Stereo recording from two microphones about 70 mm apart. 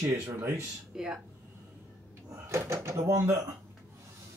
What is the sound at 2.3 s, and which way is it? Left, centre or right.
Speech, right.